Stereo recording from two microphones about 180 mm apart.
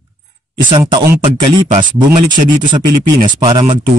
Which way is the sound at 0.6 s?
25° right (ahead or behind).